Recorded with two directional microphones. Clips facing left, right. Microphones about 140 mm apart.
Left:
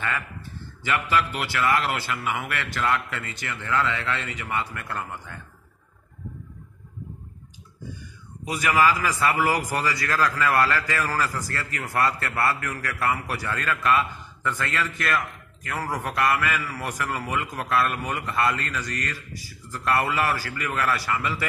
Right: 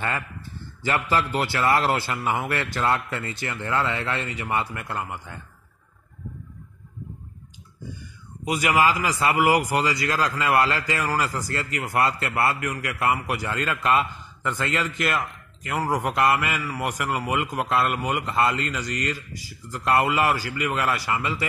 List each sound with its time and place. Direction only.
0.8 s a man's voice: 35° right (ahead or behind)
8.5 s a man's voice: 20° right (ahead or behind)